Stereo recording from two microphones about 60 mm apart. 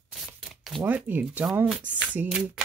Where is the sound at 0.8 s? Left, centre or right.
Right.